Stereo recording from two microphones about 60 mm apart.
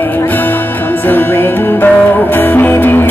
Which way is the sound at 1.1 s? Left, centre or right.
Left.